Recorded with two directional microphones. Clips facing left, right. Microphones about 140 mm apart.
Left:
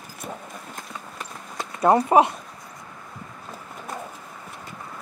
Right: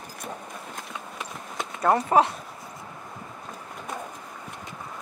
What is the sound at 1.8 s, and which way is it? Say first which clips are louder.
Speech: left 4 dB; 20° left (ahead or behind).